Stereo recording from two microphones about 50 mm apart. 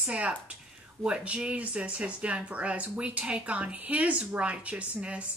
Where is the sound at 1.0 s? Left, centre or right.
Right.